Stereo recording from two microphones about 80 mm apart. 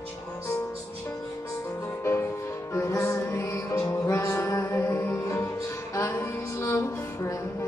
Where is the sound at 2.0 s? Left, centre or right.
Left.